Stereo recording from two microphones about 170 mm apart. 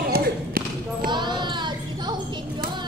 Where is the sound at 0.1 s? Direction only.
60° right (ahead or behind).